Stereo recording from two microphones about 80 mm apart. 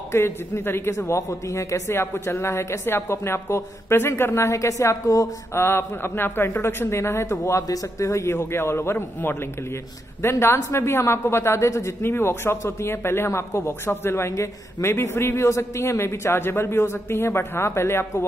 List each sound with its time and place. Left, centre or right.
0.1 s a man's voice: left
5.6 s a man's voice: left